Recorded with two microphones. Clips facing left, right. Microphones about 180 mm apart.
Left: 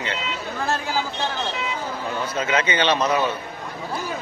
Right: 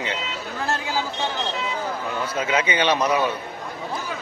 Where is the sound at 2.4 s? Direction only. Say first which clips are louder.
Even; 10° right (ahead or behind).